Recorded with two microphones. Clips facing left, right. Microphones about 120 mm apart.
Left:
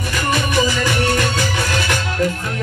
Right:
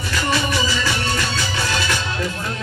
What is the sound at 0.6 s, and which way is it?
Music, 55° left (ahead or behind).